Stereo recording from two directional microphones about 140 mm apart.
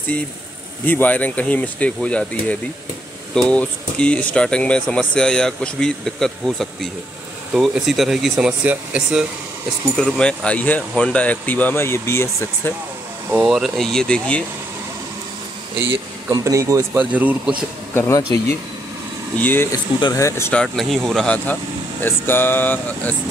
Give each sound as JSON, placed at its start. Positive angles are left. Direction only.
{"t": 0.8, "sound": "speech", "side_deg": 15}
{"t": 9.9, "sound": "speech", "side_deg": 5}
{"t": 13.3, "sound": "speech", "side_deg": -5}
{"t": 15.9, "sound": "speech", "side_deg": -25}
{"t": 16.9, "sound": "speech", "side_deg": -10}
{"t": 17.9, "sound": "speech", "side_deg": 20}
{"t": 20.5, "sound": "speech", "side_deg": 0}